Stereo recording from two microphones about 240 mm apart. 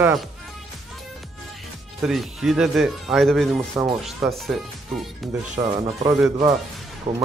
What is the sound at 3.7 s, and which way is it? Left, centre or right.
Speech, centre.